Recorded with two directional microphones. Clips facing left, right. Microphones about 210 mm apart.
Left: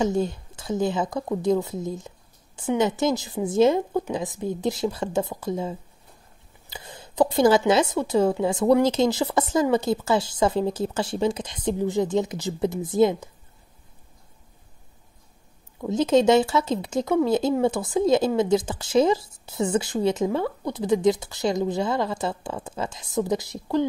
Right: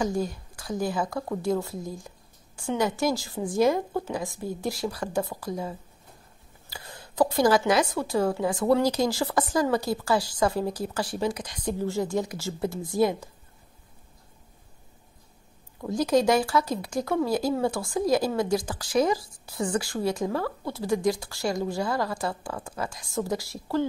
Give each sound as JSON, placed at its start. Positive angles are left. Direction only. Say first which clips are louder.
{"t": 0.0, "sound": "speech", "louder": "left 4 dB", "side_deg": 25}
{"t": 15.9, "sound": "speech", "louder": "left 4 dB", "side_deg": 25}